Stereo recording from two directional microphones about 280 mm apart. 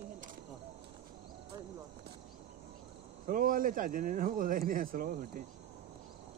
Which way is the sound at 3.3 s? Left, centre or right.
Right.